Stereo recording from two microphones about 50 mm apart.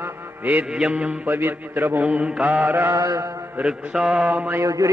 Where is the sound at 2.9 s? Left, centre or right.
Right.